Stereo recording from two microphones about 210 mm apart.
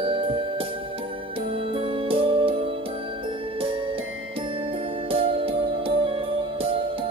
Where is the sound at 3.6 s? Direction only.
25° right (ahead or behind).